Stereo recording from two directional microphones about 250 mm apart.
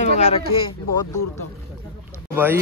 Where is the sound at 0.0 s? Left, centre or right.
Left.